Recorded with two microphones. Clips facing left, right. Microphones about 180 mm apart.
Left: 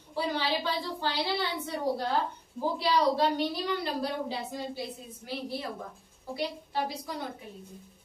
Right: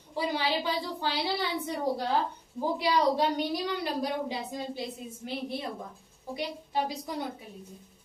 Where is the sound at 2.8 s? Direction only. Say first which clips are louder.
Even; 15° right (ahead or behind).